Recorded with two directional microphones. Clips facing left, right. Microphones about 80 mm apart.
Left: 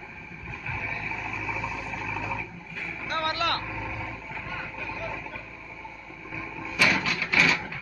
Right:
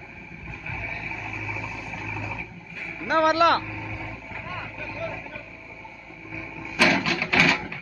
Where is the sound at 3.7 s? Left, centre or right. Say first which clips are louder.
Left 1 dB; centre.